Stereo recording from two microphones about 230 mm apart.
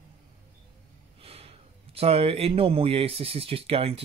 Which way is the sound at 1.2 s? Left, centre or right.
Right.